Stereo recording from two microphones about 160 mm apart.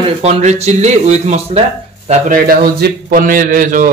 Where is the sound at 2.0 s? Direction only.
60° right (ahead or behind).